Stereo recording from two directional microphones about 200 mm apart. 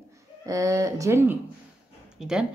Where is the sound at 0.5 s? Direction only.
15° right (ahead or behind).